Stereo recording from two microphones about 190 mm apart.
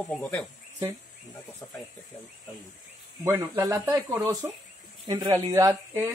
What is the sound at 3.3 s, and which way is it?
Speech, 15° right (ahead or behind).